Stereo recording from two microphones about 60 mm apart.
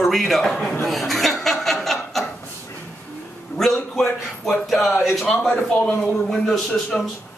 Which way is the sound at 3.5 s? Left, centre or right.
Left.